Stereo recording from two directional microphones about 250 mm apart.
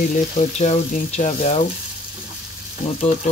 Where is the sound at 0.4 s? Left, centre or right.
Left.